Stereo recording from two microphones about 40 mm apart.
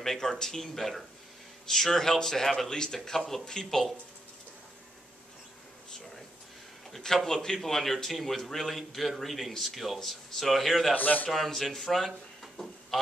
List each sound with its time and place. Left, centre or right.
0.0 s a man's voice: centre
3.2 s a man's voice: centre
3.4 s a man's voice: centre
7.0 s a man's voice: centre
11.0 s a man's voice: left
11.2 s speech: centre